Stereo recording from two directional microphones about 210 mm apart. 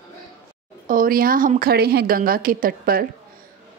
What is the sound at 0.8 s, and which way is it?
A woman's voice, 40° right (ahead or behind).